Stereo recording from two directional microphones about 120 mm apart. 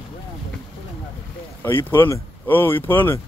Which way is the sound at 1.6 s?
20° left (ahead or behind).